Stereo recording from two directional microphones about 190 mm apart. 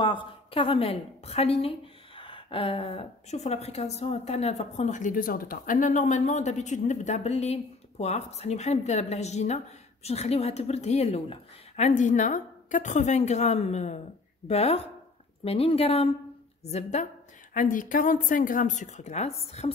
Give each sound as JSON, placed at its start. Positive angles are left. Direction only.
{"t": 0.0, "sound": "a woman's voice", "side_deg": 25}